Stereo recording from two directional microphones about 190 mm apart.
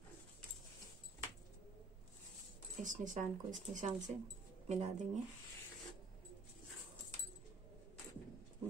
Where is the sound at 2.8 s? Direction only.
40° right (ahead or behind).